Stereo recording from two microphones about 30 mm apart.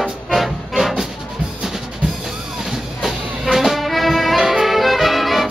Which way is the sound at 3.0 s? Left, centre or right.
Centre.